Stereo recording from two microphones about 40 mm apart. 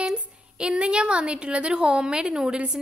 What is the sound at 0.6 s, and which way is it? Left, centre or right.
A woman's voice, right.